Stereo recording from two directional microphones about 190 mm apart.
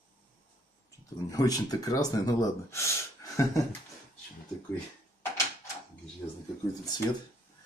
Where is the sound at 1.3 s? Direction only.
20° left (ahead or behind).